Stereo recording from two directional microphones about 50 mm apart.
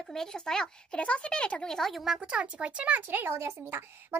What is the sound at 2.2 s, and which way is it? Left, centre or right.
Speech, right.